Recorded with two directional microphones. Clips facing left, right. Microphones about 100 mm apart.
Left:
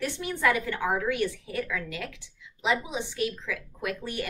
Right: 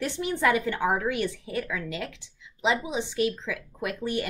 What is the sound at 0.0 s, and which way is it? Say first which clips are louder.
A woman's voice: right 2 dB; 20° right (ahead or behind).